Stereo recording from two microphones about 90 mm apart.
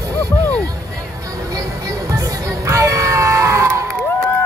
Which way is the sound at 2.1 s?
35° right (ahead or behind).